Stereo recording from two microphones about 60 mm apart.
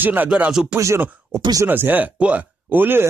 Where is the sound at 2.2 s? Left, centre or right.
Right.